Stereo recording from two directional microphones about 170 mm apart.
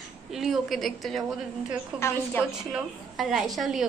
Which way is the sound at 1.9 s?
15° left (ahead or behind).